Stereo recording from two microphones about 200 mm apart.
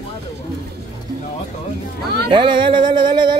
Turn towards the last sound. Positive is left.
turn(degrees=-25)  # may be behind; listen again after turning